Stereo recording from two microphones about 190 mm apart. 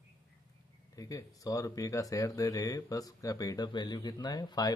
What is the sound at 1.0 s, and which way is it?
Speech, 20° left (ahead or behind).